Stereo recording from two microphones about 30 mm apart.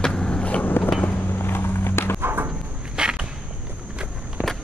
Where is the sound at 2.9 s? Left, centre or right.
Right.